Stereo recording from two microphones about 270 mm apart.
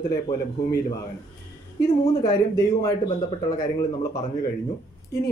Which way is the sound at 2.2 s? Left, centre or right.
Centre.